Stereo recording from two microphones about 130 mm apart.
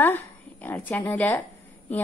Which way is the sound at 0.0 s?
15° left (ahead or behind).